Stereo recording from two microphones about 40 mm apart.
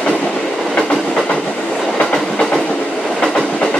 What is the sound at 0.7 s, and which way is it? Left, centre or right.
Train, centre.